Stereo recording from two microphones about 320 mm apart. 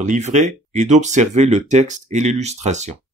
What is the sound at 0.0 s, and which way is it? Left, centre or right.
Speech, right.